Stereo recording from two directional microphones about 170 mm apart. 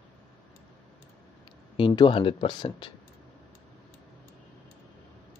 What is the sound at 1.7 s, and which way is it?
Speech, 30° left (ahead or behind).